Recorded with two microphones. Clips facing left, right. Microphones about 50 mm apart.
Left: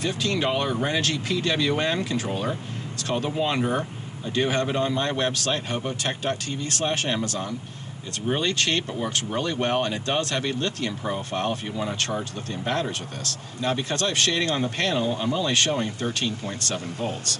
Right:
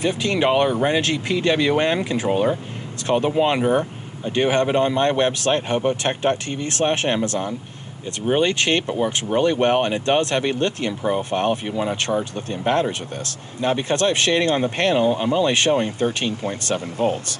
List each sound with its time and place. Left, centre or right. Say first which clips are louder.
0.0 s speech: right 5 dB; right
4.3 s speech: right 6 dB; right
13.6 s speech: right 6 dB; right